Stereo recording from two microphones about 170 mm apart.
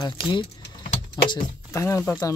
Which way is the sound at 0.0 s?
30° left (ahead or behind).